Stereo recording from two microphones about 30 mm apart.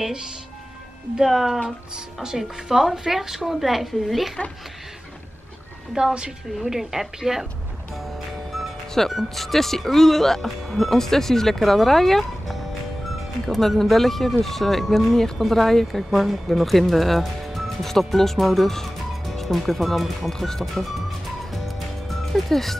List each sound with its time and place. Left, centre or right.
1.2 s a woman's voice: centre
6.0 s a woman's voice: right
6.6 s a woman's voice: centre
9.1 s speech: centre
16.0 s speech: centre
21.5 s music: centre
22.3 s speech: centre